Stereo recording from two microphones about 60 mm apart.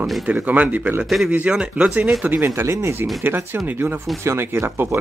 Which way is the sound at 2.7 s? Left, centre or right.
Right.